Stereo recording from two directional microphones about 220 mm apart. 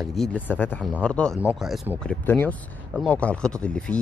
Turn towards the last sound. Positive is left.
turn(degrees=5)  # may be behind; listen again after turning